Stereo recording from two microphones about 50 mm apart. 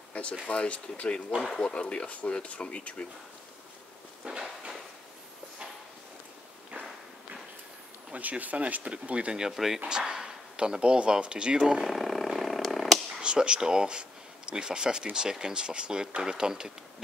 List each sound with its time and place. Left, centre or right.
0.1 s speech: left
4.2 s a sound: centre
8.1 s speech: right
9.4 s speech: centre
11.8 s a sound: centre
13.2 s speech: centre